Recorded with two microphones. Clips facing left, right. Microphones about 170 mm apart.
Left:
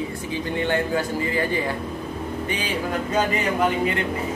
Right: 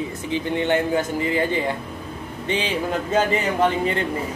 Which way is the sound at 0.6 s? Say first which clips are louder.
Right 2 dB; 20° right (ahead or behind).